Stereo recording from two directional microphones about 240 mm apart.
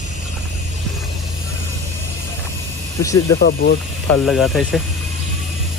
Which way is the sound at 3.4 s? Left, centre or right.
Left.